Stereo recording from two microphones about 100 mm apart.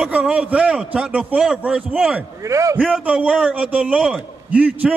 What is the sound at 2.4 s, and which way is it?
Speech, 30° right (ahead or behind).